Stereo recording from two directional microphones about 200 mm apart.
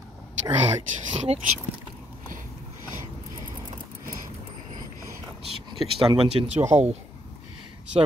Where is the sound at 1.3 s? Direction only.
30° right (ahead or behind).